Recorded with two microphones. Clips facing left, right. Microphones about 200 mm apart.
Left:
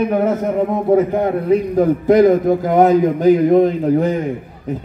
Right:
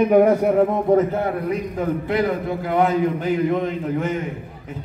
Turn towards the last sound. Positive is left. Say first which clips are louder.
# left 8 dB
turn(degrees=40)  # may be behind; listen again after turning